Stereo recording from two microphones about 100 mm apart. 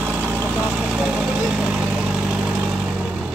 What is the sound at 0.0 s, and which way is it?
Vehicle, 20° right (ahead or behind).